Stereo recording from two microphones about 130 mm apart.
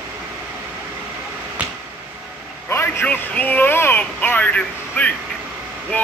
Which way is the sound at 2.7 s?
20° left (ahead or behind).